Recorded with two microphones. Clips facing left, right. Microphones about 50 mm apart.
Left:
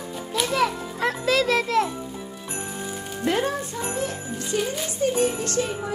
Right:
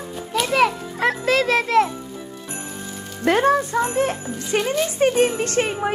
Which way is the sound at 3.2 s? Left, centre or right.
Right.